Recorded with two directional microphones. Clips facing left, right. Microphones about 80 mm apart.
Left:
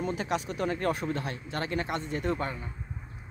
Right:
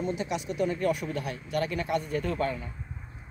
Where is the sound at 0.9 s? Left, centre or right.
Left.